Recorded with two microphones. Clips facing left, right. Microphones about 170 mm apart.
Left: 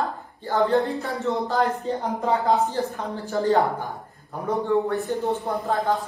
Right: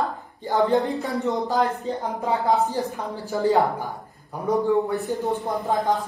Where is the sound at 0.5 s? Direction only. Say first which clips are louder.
Right 1 dB; 20° right (ahead or behind).